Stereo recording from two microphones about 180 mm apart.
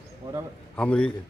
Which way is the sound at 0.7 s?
5° left (ahead or behind).